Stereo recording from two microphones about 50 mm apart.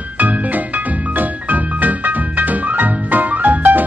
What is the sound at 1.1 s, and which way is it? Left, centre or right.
Music, right.